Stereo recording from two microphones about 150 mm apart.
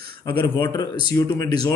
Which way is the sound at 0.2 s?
30° left (ahead or behind).